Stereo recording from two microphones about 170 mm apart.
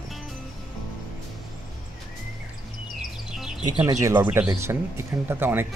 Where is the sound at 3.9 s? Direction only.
20° right (ahead or behind).